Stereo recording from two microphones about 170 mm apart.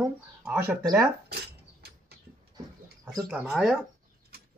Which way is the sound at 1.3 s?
70° right (ahead or behind).